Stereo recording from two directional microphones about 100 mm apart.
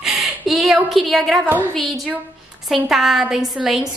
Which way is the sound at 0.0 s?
5° right (ahead or behind).